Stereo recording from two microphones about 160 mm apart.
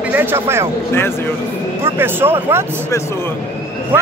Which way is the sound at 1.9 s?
15° right (ahead or behind).